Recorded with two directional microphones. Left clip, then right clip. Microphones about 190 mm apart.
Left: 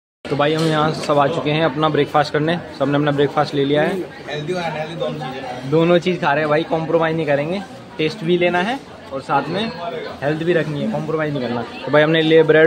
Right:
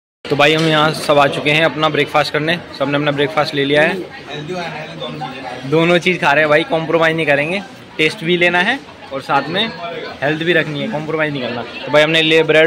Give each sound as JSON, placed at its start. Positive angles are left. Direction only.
{"t": 0.4, "sound": "a man's voice", "side_deg": -10}
{"t": 5.7, "sound": "a man's voice", "side_deg": 0}
{"t": 11.9, "sound": "a man's voice", "side_deg": 20}